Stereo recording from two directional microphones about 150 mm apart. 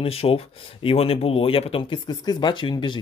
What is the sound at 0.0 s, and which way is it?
Speech, 40° left (ahead or behind).